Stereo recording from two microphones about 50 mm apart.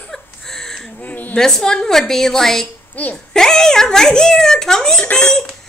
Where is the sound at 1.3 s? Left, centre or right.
Centre.